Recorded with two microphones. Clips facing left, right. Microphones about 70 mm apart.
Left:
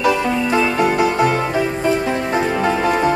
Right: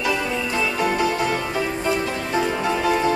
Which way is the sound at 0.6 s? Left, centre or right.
Left.